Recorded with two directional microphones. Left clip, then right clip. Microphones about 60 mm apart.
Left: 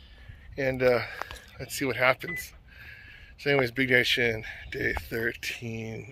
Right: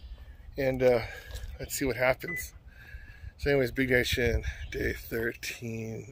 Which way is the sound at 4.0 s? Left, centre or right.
Right.